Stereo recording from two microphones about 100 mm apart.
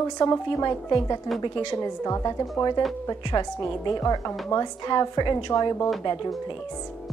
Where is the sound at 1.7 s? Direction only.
35° left (ahead or behind).